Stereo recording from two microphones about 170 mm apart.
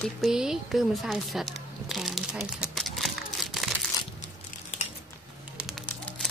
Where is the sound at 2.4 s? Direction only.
Centre (ahead or behind).